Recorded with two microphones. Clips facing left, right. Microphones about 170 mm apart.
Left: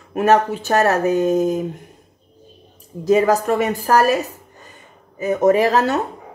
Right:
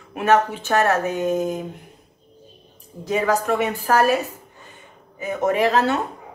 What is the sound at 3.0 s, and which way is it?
Speech, 40° left (ahead or behind).